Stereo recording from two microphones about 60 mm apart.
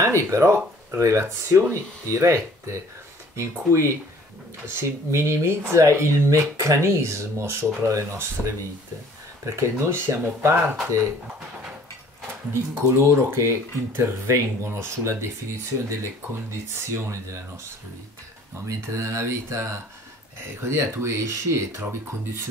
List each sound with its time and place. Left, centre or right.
0.0 s speech: right
12.5 s speech: right
16.9 s speech: right
18.8 s speech: right